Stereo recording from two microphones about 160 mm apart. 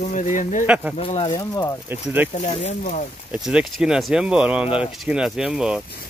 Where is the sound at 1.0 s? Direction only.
35° left (ahead or behind).